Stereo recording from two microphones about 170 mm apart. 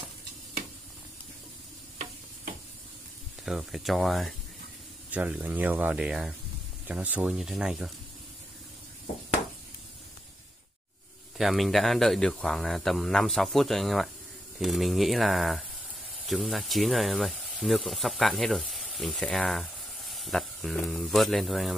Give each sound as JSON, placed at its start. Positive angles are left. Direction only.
{"t": 3.4, "sound": "speech", "side_deg": 0}
{"t": 11.3, "sound": "speech", "side_deg": 0}